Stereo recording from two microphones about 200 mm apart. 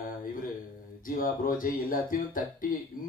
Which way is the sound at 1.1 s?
45° left (ahead or behind).